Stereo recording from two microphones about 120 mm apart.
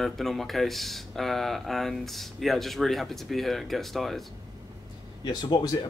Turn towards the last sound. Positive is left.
turn(degrees=35)  # may be behind; listen again after turning